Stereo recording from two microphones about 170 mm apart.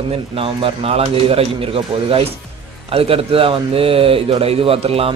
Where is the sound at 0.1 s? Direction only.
35° right (ahead or behind).